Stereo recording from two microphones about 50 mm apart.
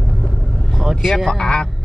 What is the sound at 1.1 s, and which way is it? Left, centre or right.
Speech, centre.